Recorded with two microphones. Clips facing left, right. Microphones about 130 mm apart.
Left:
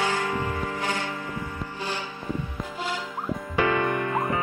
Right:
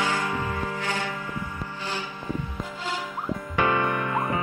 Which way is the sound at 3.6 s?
25° right (ahead or behind).